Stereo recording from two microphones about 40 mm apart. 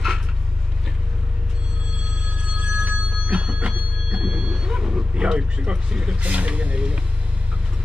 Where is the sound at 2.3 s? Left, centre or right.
Right.